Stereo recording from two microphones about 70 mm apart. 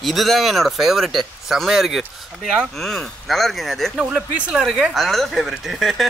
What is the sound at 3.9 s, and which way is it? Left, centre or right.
Speech, centre.